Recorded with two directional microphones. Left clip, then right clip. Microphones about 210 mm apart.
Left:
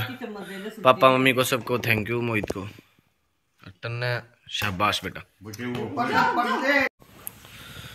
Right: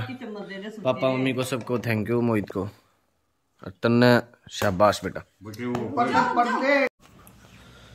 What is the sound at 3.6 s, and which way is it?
Speech, 40° right (ahead or behind).